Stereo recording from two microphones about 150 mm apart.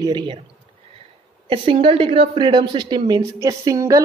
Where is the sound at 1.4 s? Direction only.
35° right (ahead or behind).